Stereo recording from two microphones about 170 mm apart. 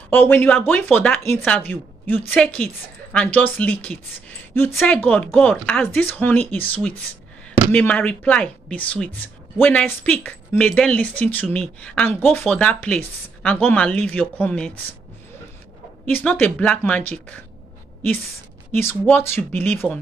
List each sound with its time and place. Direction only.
0.1 s speech: 10° left (ahead or behind)
16.1 s speech: 10° left (ahead or behind)
18.7 s speech: 10° left (ahead or behind)